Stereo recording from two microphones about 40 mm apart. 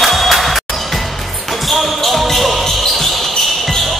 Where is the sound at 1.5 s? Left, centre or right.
Centre.